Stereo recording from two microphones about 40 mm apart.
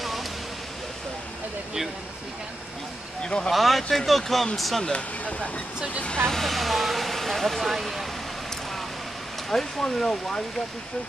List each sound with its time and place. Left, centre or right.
3.2 s speech: left
3.5 s speech: centre
6.0 s speech: centre
6.4 s speech: centre
9.5 s speech: centre